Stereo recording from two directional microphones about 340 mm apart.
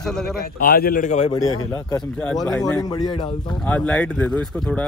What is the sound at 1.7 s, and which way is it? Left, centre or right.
A man's voice, centre.